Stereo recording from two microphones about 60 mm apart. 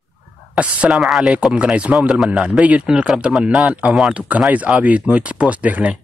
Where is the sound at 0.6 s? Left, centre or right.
Centre.